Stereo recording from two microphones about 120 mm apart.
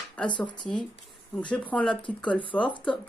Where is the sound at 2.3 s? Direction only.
45° left (ahead or behind).